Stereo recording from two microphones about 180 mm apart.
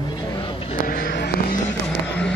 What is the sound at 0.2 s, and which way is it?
Vehicle, 25° left (ahead or behind).